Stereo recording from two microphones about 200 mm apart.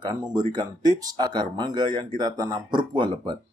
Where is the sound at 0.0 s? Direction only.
20° right (ahead or behind).